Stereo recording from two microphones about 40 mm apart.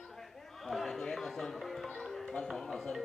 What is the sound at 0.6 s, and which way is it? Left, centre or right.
Music, centre.